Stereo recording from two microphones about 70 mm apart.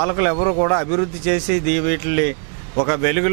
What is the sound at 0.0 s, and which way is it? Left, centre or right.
Speech, right.